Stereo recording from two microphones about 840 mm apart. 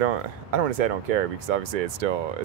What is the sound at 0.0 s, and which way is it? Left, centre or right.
Speech, right.